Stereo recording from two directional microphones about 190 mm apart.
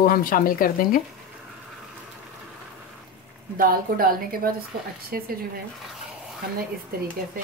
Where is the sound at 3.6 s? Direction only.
50° right (ahead or behind).